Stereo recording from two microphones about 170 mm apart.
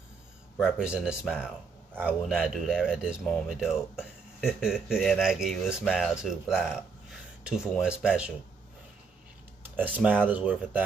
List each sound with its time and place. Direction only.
0.6 s speech: 5° right (ahead or behind)
10.2 s speech: 5° right (ahead or behind)